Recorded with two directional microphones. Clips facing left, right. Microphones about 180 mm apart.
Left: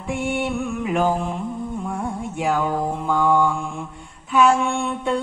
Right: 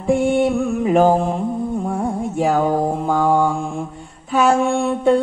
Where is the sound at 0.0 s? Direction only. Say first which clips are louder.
Right 8 dB; 35° right (ahead or behind).